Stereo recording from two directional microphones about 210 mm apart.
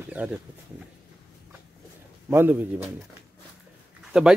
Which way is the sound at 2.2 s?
10° right (ahead or behind).